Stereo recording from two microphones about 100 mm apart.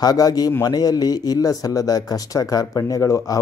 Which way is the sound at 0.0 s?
40° left (ahead or behind).